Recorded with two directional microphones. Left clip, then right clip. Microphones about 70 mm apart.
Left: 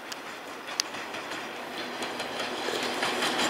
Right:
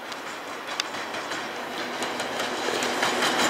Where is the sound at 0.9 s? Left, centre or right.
Centre.